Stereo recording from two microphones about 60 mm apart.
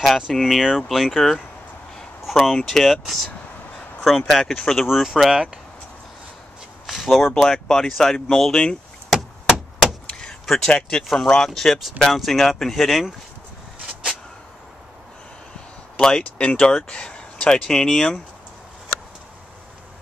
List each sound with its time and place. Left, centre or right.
0.0 s speech: centre
4.3 s speech: centre
4.8 s speech: centre
6.9 s a sound: centre
7.3 s speech: centre
9.8 s vehicle: centre
10.4 s speech: centre
16.0 s speech: centre